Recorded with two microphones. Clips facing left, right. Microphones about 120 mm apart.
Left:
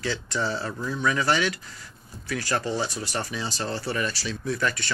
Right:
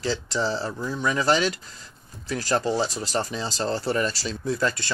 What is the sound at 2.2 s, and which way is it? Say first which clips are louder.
Speech: right 3 dB; 35° right (ahead or behind).